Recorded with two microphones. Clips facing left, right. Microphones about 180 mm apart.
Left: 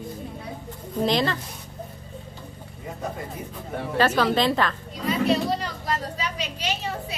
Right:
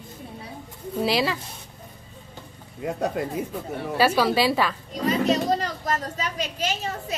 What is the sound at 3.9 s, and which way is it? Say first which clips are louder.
Speech: right 1 dB; 10° right (ahead or behind).